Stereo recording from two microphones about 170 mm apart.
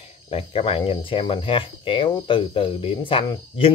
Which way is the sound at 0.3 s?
35° left (ahead or behind).